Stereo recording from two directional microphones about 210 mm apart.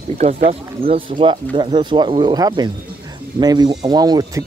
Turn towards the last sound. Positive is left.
turn(degrees=-20)  # may be behind; listen again after turning